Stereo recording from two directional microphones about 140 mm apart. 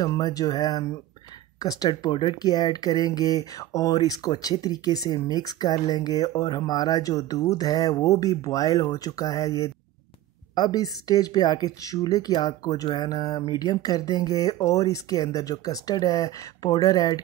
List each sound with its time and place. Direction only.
0.0 s speech: 25° left (ahead or behind)
10.5 s speech: 30° left (ahead or behind)